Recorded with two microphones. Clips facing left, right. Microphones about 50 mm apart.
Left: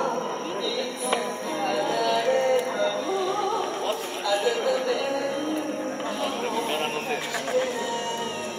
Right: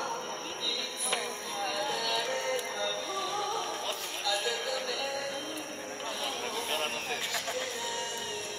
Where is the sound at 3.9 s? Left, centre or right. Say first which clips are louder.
Left 8 dB; left.